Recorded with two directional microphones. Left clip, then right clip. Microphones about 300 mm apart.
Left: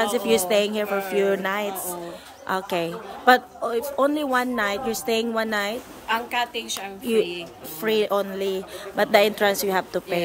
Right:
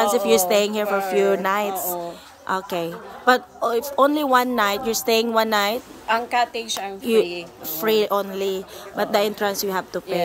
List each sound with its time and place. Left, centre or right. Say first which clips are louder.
0.0 s a woman's voice: right 4 dB; centre
0.8 s a woman's voice: right 4 dB; centre
1.1 s a woman's voice: right 3 dB; centre
6.0 s a woman's voice: right 4 dB; centre
7.8 s a woman's voice: right 2 dB; centre